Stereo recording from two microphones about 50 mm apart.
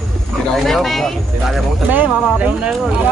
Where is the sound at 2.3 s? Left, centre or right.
Right.